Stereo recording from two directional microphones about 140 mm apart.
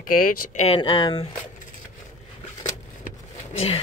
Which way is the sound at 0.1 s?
85° left.